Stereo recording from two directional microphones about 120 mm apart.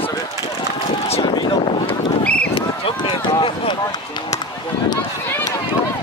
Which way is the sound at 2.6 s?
45° left (ahead or behind).